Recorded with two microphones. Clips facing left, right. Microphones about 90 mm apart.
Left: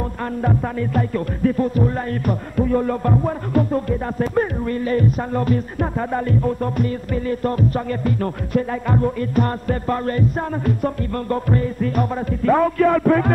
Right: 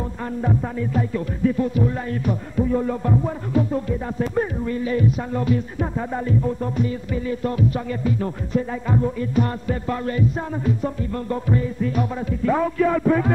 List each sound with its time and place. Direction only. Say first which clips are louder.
0.2 s music: left 2 dB; 70° left (ahead or behind)